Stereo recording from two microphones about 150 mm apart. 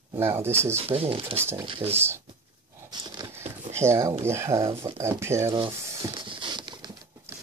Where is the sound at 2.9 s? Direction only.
30° right (ahead or behind).